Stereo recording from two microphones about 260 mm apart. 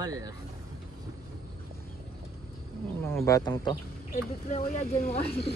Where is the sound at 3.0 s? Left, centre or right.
Centre.